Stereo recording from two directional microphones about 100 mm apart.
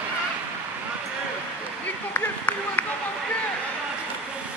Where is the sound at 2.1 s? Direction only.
20° left (ahead or behind).